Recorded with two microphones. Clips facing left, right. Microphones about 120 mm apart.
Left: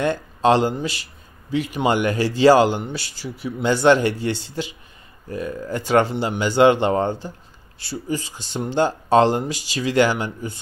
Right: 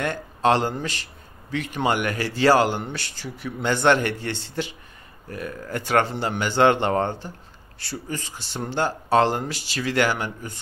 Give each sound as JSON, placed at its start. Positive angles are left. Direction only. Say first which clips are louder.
{"t": 0.0, "sound": "speech", "louder": "left 3 dB", "side_deg": 20}